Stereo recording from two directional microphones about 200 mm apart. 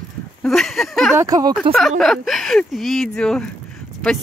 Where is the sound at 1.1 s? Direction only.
20° right (ahead or behind).